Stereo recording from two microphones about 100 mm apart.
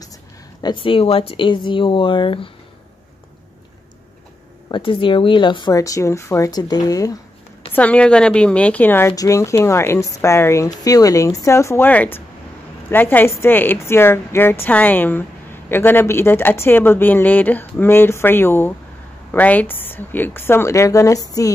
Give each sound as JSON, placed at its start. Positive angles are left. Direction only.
{"t": 0.6, "sound": "speech", "side_deg": 50}
{"t": 4.6, "sound": "speech", "side_deg": 55}
{"t": 5.8, "sound": "speech", "side_deg": 30}
{"t": 7.7, "sound": "a woman's voice", "side_deg": 15}
{"t": 9.1, "sound": "speech", "side_deg": 35}